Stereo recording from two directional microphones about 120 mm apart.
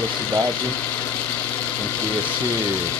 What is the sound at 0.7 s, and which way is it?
Engine, 15° left (ahead or behind).